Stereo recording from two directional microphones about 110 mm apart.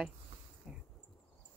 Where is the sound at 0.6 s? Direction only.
5° right (ahead or behind).